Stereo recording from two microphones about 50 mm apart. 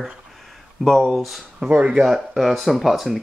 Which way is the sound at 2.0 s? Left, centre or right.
Centre.